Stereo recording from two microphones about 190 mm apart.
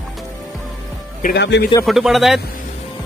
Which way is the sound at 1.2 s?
60° left (ahead or behind).